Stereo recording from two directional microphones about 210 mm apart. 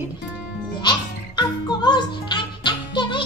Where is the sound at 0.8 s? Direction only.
20° left (ahead or behind).